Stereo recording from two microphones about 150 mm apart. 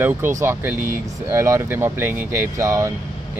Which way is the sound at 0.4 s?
15° right (ahead or behind).